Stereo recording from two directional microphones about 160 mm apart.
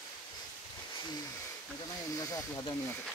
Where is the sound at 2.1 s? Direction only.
20° left (ahead or behind).